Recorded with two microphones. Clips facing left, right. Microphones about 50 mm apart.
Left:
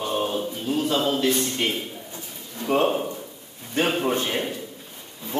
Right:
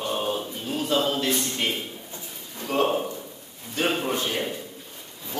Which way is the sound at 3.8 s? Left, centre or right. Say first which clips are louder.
Left 3 dB; left.